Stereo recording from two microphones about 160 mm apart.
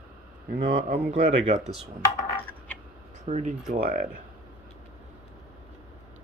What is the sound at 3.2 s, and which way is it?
Speech, 50° right (ahead or behind).